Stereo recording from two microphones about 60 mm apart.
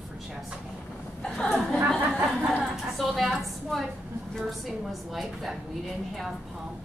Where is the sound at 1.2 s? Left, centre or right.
Centre.